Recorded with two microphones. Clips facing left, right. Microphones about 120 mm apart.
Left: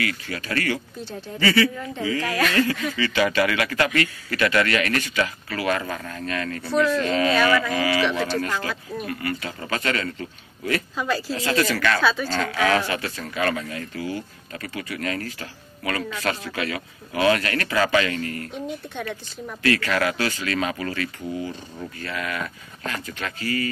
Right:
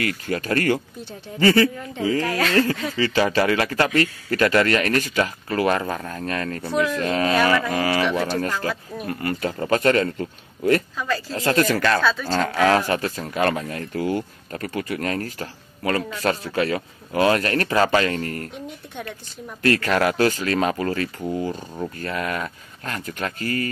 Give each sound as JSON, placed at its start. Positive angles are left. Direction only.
{"t": 0.0, "sound": "speech", "side_deg": -45}
{"t": 6.6, "sound": "speech", "side_deg": -15}
{"t": 7.0, "sound": "speech", "side_deg": -40}
{"t": 8.1, "sound": "speech", "side_deg": -10}
{"t": 9.0, "sound": "speech", "side_deg": -40}
{"t": 11.0, "sound": "speech", "side_deg": 15}
{"t": 11.3, "sound": "speech", "side_deg": -45}
{"t": 12.0, "sound": "speech", "side_deg": 5}
{"t": 12.3, "sound": "speech", "side_deg": -35}
{"t": 19.6, "sound": "speech", "side_deg": -40}